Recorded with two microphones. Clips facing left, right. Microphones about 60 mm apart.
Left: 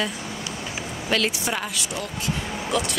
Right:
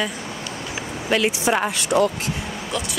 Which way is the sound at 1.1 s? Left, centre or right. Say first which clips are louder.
Right 5 dB; centre.